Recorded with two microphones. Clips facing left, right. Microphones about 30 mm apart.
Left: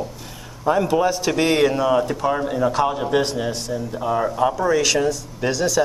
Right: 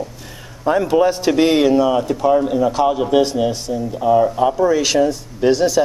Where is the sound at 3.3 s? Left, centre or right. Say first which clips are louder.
Right 5 dB; centre.